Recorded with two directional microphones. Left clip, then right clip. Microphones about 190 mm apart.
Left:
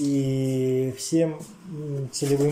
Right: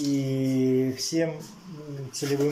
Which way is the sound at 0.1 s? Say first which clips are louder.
Left 1 dB; 20° left (ahead or behind).